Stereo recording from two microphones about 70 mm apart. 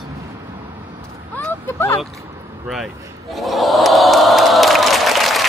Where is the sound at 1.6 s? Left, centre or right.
Left.